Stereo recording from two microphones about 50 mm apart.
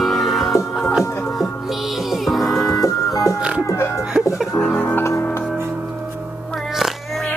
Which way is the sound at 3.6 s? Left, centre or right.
Left.